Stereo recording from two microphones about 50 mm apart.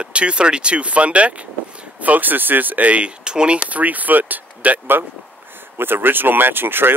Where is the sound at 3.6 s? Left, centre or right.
Right.